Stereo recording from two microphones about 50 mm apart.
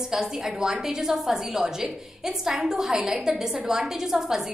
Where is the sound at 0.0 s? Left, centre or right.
Centre.